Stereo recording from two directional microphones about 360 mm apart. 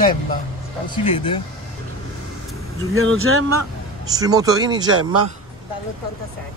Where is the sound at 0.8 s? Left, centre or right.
Centre.